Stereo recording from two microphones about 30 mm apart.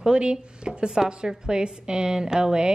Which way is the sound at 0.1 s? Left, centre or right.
Right.